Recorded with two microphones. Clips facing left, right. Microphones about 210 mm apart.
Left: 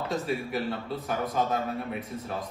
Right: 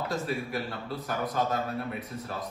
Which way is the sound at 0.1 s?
Centre (ahead or behind).